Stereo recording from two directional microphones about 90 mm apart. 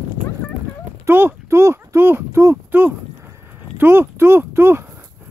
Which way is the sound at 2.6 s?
20° right (ahead or behind).